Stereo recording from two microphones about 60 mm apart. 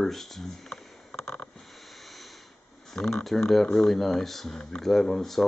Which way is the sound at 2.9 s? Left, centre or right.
Centre.